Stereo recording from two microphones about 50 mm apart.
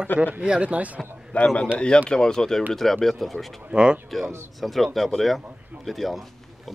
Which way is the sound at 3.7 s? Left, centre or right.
Centre.